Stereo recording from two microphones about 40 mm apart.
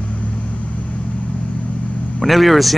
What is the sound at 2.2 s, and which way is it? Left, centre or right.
Speech, centre.